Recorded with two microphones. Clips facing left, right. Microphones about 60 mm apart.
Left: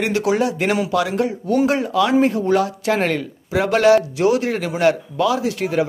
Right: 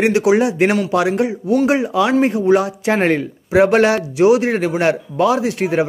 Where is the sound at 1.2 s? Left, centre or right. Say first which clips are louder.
Right 2 dB; centre.